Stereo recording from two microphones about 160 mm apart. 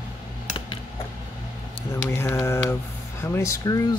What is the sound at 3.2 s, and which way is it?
Speech, 20° left (ahead or behind).